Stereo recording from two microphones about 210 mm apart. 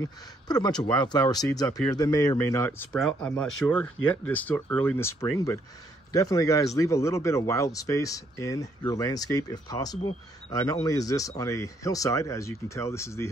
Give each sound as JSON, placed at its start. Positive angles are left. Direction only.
{"t": 0.0, "sound": "speech", "side_deg": 20}